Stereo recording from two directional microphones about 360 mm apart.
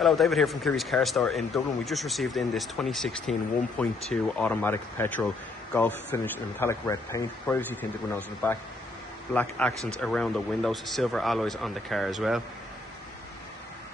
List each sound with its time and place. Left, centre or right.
0.0 s a man's voice: centre